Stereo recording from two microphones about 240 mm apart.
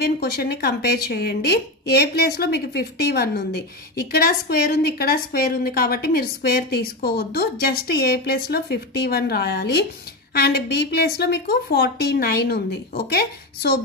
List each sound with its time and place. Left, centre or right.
0.0 s a woman's voice: left